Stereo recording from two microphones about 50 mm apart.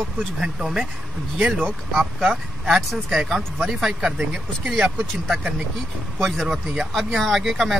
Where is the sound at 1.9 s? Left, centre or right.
Centre.